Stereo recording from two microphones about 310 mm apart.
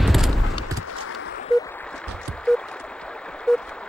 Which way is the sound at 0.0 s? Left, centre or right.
Centre.